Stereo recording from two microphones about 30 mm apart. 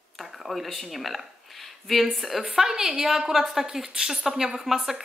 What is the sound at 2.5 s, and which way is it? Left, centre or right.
A woman's voice, centre.